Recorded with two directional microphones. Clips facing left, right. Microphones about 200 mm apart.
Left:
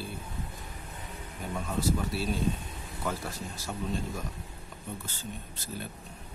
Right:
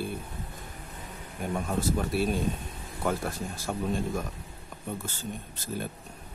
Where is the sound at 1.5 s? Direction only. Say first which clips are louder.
Right 2 dB; 50° right (ahead or behind).